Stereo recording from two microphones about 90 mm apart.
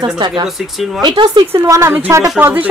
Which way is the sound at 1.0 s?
60° right (ahead or behind).